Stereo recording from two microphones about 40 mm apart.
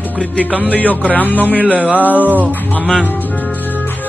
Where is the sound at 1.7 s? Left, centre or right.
Right.